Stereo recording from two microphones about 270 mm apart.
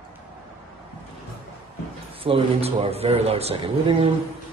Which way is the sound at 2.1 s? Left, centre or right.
Right.